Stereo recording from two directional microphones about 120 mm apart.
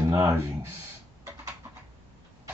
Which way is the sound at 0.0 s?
25° right (ahead or behind).